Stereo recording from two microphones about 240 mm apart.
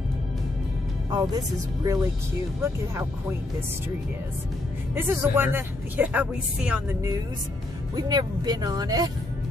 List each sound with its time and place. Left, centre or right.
1.1 s speech: centre
4.9 s speech: centre